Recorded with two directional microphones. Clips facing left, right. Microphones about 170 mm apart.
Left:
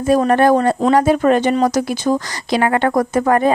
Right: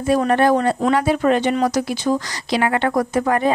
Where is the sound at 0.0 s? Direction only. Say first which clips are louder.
Left 3 dB; 45° left (ahead or behind).